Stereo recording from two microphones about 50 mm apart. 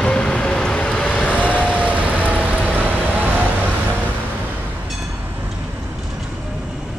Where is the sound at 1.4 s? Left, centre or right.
Right.